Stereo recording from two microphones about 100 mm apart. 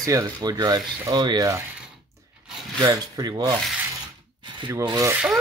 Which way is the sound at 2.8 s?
40° right (ahead or behind).